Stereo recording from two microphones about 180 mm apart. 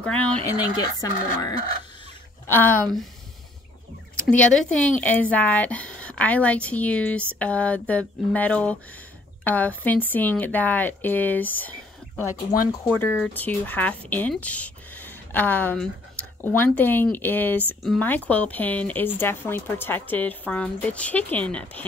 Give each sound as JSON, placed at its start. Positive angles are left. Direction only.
{"t": 0.0, "sound": "speech", "side_deg": 5}
{"t": 0.5, "sound": "speech", "side_deg": 20}
{"t": 4.3, "sound": "speech", "side_deg": 5}